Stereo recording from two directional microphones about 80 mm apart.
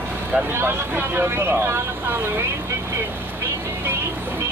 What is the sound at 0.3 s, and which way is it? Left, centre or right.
Speech, right.